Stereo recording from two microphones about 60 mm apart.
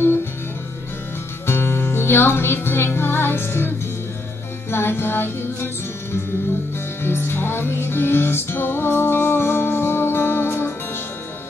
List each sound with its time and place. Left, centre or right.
1.5 s music: left
7.0 s music: left